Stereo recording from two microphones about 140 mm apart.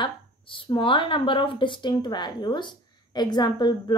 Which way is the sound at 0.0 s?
35° left (ahead or behind).